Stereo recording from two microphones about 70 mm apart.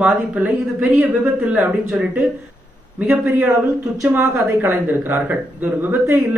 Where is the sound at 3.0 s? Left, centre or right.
Centre.